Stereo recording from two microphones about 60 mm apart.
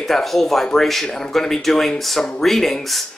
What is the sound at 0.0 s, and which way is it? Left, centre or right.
Speech, centre.